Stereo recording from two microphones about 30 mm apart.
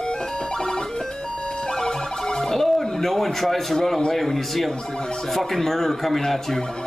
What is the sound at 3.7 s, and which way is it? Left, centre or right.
A man's voice, centre.